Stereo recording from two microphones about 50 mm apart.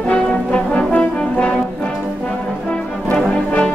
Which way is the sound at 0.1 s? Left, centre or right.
Left.